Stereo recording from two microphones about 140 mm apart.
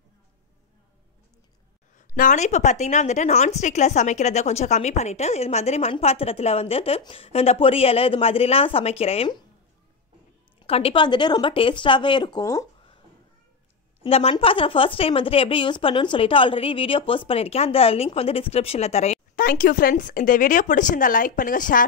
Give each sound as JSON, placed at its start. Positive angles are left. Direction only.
{"t": 2.0, "sound": "a woman's voice", "side_deg": 65}
{"t": 10.7, "sound": "speech", "side_deg": 45}
{"t": 14.0, "sound": "a woman's voice", "side_deg": 45}
{"t": 19.3, "sound": "speech", "side_deg": 85}